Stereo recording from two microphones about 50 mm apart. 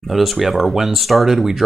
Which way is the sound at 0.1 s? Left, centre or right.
Centre.